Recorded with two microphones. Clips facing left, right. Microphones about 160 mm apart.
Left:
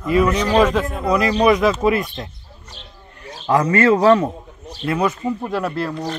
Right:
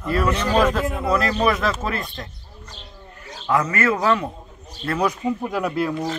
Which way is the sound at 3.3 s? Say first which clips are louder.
Left 5 dB; 30° left (ahead or behind).